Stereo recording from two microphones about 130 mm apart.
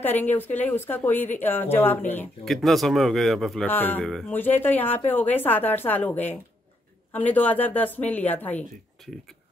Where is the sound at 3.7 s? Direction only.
15° left (ahead or behind).